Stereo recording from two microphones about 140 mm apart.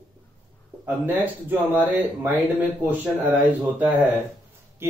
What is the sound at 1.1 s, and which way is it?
Speech, 15° right (ahead or behind).